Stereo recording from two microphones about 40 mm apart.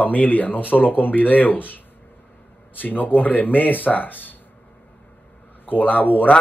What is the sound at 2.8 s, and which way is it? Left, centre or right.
Speech, left.